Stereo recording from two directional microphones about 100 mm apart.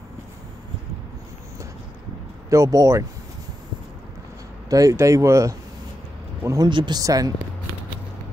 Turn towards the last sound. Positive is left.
turn(degrees=-35)  # may be behind; listen again after turning